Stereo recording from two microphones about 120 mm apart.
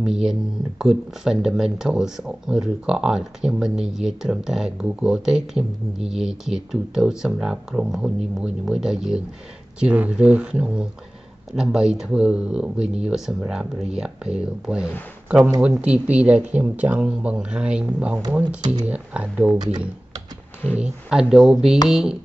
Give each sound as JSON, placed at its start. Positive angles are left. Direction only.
{"t": 0.0, "sound": "speech", "side_deg": -5}
{"t": 20.8, "sound": "speech", "side_deg": -5}